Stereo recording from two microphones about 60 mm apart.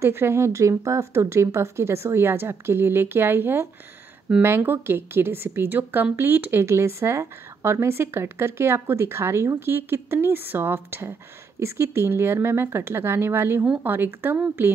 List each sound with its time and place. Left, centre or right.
0.0 s speech: right
6.6 s speech: right